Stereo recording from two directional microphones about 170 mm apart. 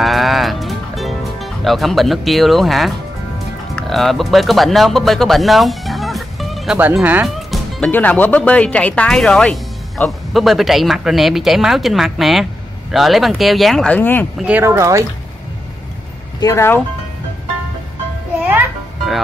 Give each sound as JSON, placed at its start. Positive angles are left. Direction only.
{"t": 0.0, "sound": "music", "side_deg": 0}
{"t": 3.7, "sound": "speech", "side_deg": 0}
{"t": 14.4, "sound": "speech", "side_deg": -10}
{"t": 16.3, "sound": "speech", "side_deg": 20}